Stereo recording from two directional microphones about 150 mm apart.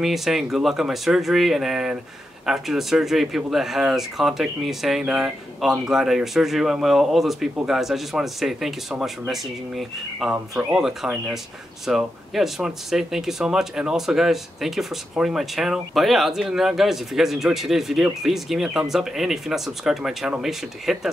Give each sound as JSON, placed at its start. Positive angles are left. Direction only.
{"t": 0.0, "sound": "speech", "side_deg": 0}